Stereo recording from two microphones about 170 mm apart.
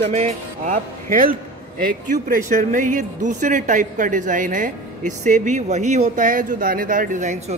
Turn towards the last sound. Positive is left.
turn(degrees=-50)  # may be behind; listen again after turning